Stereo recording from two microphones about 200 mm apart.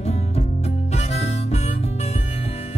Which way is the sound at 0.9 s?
30° left (ahead or behind).